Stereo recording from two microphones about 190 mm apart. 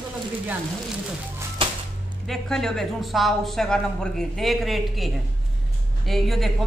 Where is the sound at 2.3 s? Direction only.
5° left (ahead or behind).